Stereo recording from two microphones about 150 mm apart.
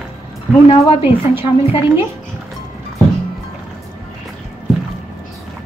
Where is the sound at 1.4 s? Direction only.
40° left (ahead or behind).